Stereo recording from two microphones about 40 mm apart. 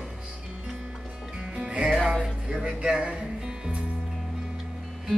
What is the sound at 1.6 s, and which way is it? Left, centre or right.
Music, right.